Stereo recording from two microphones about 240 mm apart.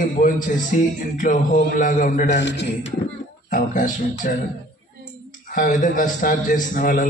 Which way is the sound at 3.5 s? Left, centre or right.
Left.